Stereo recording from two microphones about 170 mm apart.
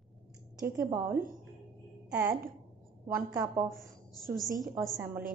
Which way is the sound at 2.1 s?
15° right (ahead or behind).